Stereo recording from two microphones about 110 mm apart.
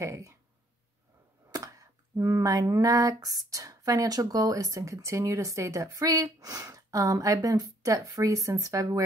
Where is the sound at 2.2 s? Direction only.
30° right (ahead or behind).